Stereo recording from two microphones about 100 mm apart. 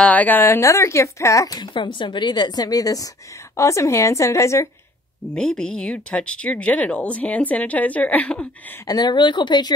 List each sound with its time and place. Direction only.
0.0 s speech: 15° left (ahead or behind); by 1.7 s 40° left (ahead or behind)
1.7 s a woman's voice: 55° left (ahead or behind); by 4.6 s 30° left (ahead or behind)
5.3 s speech: 10° left (ahead or behind)
8.8 s a woman's voice: 40° left (ahead or behind)